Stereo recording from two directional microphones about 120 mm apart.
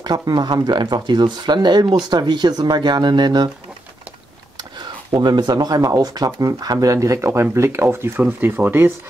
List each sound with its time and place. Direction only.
0.0 s speech: 35° right (ahead or behind)
4.6 s speech: 35° right (ahead or behind); by 8.9 s 20° right (ahead or behind)